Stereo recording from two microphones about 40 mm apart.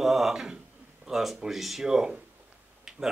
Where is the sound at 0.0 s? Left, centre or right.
Centre.